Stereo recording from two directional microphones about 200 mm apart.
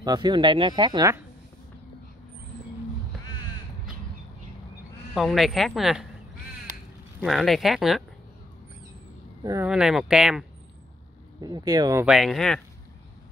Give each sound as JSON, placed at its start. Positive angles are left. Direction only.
{"t": 0.0, "sound": "speech", "side_deg": -20}
{"t": 5.1, "sound": "speech", "side_deg": 0}
{"t": 7.2, "sound": "speech", "side_deg": 0}
{"t": 9.4, "sound": "speech", "side_deg": -20}
{"t": 9.7, "sound": "speech", "side_deg": -5}
{"t": 11.4, "sound": "speech", "side_deg": -20}
{"t": 12.1, "sound": "speech", "side_deg": 0}